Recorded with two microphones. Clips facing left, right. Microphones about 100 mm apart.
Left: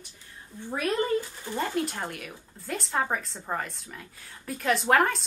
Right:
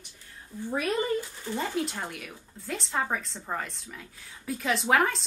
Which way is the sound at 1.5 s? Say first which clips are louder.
Left 1 dB; centre (ahead or behind).